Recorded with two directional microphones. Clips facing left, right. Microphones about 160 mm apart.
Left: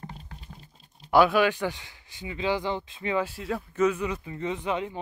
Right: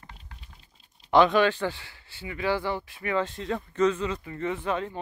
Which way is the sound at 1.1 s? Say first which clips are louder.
Even; 10° left (ahead or behind).